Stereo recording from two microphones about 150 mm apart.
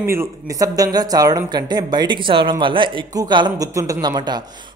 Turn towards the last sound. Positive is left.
turn(degrees=-25)  # may be behind; listen again after turning